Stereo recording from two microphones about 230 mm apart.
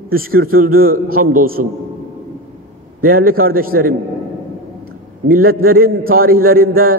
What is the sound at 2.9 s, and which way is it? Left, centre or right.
A man's voice, right.